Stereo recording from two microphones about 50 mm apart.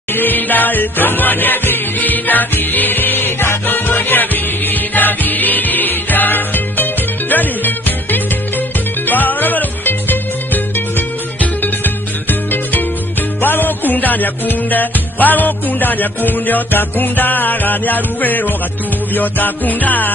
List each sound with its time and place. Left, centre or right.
0.1 s music: left